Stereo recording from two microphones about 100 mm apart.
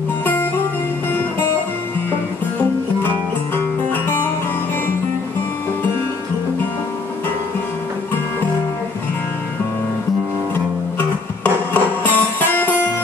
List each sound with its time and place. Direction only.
0.2 s guitar: 20° left (ahead or behind)
11.0 s music: 20° left (ahead or behind)